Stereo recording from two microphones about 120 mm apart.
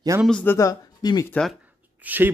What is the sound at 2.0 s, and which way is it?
Speech, 15° right (ahead or behind).